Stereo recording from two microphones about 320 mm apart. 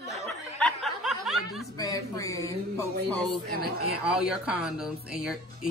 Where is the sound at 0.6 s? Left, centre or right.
Centre.